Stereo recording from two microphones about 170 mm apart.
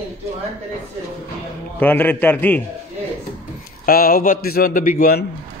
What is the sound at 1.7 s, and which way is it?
Speech, 10° left (ahead or behind).